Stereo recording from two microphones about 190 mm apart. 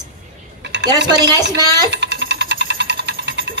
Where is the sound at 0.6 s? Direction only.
65° right (ahead or behind).